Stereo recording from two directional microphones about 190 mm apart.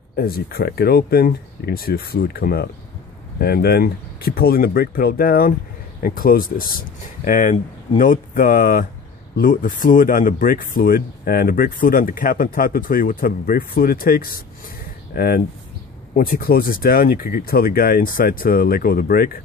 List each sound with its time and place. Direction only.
0.1 s speech: 55° left (ahead or behind)